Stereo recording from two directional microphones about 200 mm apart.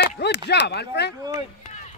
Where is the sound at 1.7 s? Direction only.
35° left (ahead or behind).